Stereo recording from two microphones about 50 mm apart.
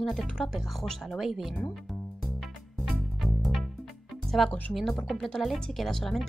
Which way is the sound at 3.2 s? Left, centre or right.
Centre.